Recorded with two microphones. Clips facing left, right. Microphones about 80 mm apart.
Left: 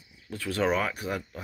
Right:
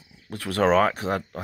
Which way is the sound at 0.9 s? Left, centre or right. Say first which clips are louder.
Right 6 dB; right.